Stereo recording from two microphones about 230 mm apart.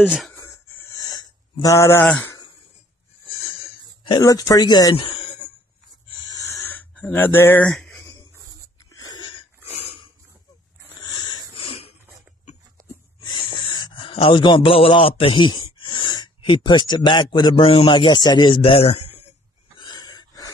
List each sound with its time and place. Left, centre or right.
0.0 s speech: centre
0.4 s a sound: centre
4.0 s speech: centre
6.0 s a sound: centre
8.9 s wheeze: centre
13.2 s a man's voice: centre
19.8 s snort: centre